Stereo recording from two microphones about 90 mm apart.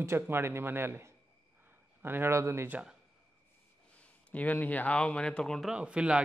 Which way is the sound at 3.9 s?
15° left (ahead or behind).